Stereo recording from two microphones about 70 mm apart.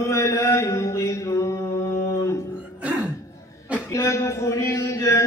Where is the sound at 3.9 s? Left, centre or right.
Left.